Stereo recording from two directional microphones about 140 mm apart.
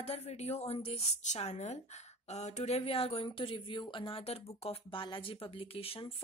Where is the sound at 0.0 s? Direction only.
50° left (ahead or behind).